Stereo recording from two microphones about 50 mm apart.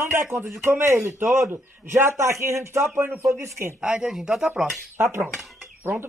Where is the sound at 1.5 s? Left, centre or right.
Right.